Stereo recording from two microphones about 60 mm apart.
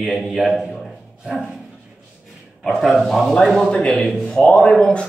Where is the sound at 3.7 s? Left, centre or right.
Centre.